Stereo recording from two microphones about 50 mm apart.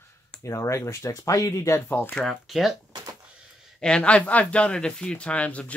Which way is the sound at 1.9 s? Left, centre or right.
Left.